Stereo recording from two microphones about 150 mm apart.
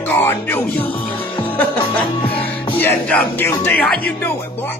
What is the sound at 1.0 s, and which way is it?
Music, 35° left (ahead or behind).